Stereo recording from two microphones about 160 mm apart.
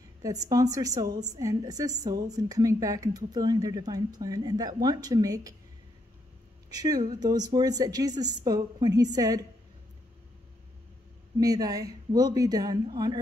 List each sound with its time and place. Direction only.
0.2 s a woman's voice: 20° right (ahead or behind)
6.7 s a woman's voice: 25° right (ahead or behind)
11.3 s a woman's voice: 20° right (ahead or behind)